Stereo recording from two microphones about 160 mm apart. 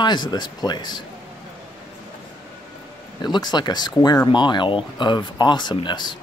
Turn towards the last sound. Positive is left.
turn(degrees=30)  # may be behind; listen again after turning